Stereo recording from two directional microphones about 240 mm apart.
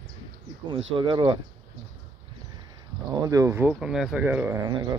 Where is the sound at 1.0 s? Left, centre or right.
Centre.